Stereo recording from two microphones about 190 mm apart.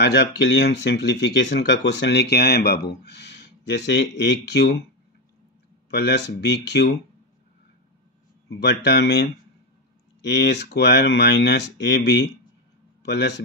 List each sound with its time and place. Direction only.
0.0 s speech: 60° left (ahead or behind)
5.9 s speech: 60° left (ahead or behind)
8.5 s a man's voice: 60° left (ahead or behind)